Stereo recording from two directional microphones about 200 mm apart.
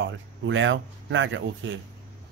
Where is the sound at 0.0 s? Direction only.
70° right (ahead or behind).